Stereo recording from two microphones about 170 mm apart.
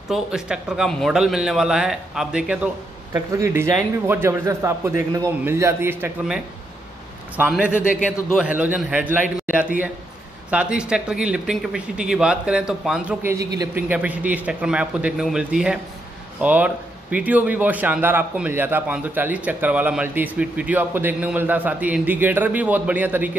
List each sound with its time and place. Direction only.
0.1 s speech: 5° right (ahead or behind)
3.3 s a man's voice: 20° right (ahead or behind)